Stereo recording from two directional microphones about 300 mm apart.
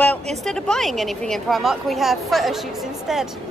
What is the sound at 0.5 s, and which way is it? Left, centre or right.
A woman's voice, centre.